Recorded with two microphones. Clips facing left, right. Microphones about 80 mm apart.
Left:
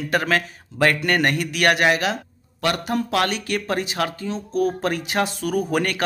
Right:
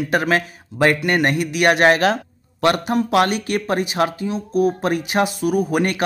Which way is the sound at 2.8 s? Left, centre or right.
Right.